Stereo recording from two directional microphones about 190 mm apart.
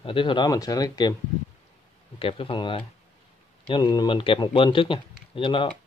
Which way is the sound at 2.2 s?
25° left (ahead or behind).